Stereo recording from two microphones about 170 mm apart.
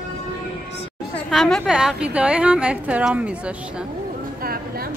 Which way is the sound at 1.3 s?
Centre (ahead or behind).